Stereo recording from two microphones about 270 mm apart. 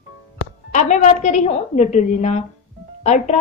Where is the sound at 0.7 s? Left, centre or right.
Left.